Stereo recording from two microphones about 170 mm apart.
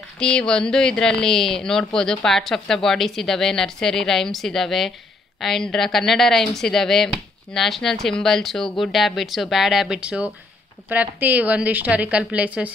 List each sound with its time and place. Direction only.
0.2 s a woman's voice: 5° left (ahead or behind)